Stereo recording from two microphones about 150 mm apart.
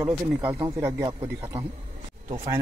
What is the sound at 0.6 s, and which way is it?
Speech, 20° right (ahead or behind).